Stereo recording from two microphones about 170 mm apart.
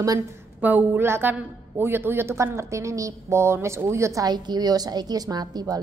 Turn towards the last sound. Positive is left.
turn(degrees=-25)  # may be behind; listen again after turning